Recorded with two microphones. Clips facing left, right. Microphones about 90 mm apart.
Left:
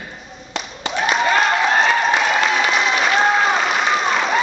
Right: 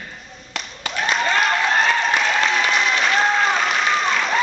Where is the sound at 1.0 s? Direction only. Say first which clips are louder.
Left 3 dB; 10° left (ahead or behind).